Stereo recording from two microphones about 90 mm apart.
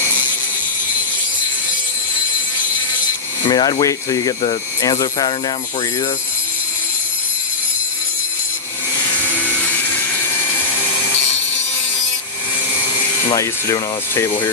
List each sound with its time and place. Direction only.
3.4 s speech: 50° left (ahead or behind)
13.3 s speech: 35° left (ahead or behind)